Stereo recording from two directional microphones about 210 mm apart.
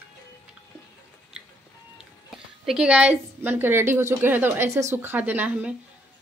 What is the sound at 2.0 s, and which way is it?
Speech, centre (ahead or behind).